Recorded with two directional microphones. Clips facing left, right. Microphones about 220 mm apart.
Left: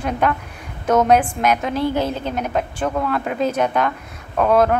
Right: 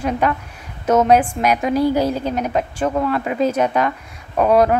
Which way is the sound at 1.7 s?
40° right (ahead or behind).